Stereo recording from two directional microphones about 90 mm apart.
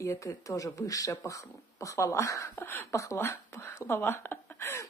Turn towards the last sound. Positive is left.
turn(degrees=25)  # may be behind; listen again after turning